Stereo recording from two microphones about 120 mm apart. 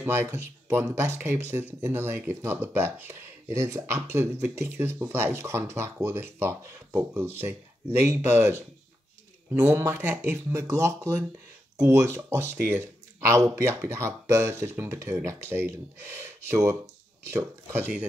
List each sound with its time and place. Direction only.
0.0 s speech: 20° right (ahead or behind)
9.7 s speech: 20° right (ahead or behind)